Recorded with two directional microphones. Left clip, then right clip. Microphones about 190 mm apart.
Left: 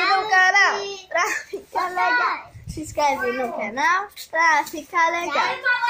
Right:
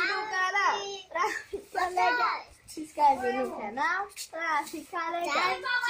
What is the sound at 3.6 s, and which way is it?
A child's voice, 10° left (ahead or behind).